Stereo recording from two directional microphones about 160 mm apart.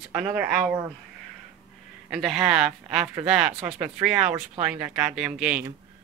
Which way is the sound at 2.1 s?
5° right (ahead or behind).